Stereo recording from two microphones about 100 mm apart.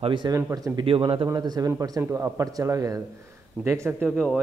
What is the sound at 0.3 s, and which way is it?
Speech, 25° right (ahead or behind).